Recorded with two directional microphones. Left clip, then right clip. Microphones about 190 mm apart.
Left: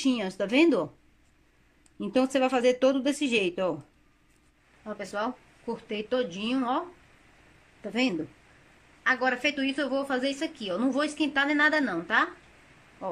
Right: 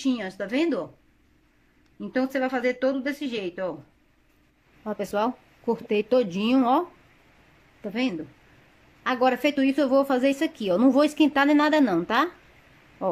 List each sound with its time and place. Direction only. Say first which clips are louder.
0.0 s speech: even; 10° left (ahead or behind)
2.0 s speech: left 1 dB; 10° left (ahead or behind)
4.8 s a woman's voice: right 6 dB; 20° right (ahead or behind)
7.9 s speech: even; 5° left (ahead or behind)
9.0 s a woman's voice: right 3 dB; 20° right (ahead or behind)